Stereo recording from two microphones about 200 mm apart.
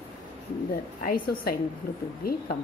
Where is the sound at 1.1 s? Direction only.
50° left (ahead or behind).